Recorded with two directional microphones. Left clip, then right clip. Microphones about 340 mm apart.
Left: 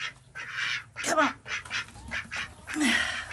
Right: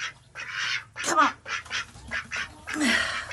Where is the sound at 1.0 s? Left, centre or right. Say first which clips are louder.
Right 3 dB; centre.